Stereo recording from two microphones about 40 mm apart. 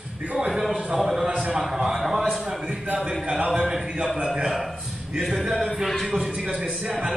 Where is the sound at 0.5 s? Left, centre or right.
Centre.